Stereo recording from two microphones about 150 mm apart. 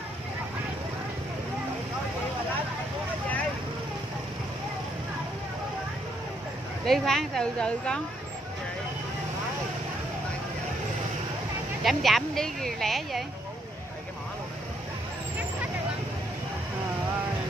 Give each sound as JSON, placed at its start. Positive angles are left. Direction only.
{"t": 6.9, "sound": "speech", "side_deg": 5}
{"t": 11.8, "sound": "speech", "side_deg": 0}